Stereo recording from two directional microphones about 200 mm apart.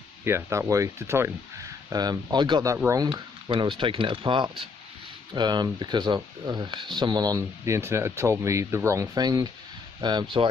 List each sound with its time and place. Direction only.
0.2 s speech: 15° right (ahead or behind)